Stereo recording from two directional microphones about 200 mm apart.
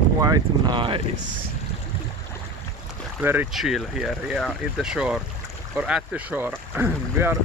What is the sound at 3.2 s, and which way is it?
Speech, 10° right (ahead or behind).